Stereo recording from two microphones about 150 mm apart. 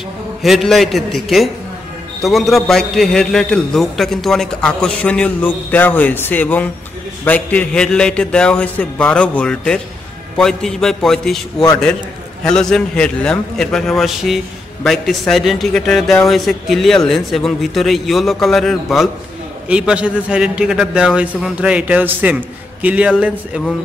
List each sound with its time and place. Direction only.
0.4 s a man's voice: centre (ahead or behind)
12.4 s a man's voice: 5° left (ahead or behind)